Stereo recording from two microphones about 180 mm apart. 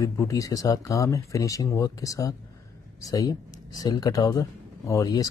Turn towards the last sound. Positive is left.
turn(degrees=20)  # may be behind; listen again after turning